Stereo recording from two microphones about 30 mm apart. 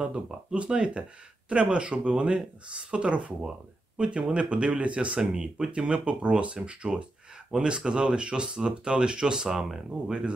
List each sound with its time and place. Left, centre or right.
0.1 s speech: right
3.2 s speech: right
5.3 s speech: right